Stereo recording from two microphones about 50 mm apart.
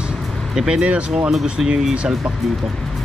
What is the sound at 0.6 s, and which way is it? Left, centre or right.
Speech, centre.